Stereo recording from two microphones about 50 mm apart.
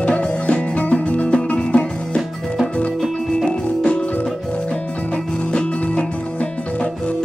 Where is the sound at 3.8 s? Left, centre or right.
Centre.